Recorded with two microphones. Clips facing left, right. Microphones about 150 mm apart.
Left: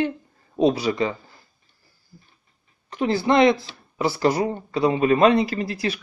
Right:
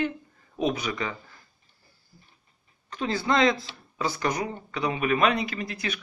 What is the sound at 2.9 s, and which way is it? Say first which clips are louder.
Speech: left 6 dB; 25° left (ahead or behind).